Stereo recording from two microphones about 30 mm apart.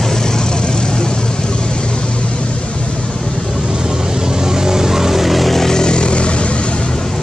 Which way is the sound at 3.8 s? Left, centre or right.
Right.